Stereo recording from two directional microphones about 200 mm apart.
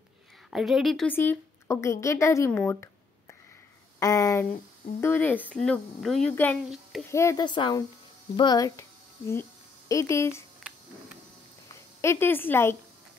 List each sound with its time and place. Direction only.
0.5 s a woman's voice: centre (ahead or behind); by 10.4 s 15° left (ahead or behind)
12.0 s speech: 10° left (ahead or behind)